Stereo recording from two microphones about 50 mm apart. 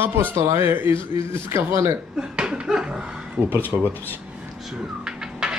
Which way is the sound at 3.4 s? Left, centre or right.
Right.